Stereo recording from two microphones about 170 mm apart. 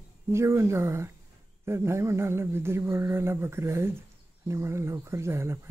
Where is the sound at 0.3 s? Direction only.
15° right (ahead or behind).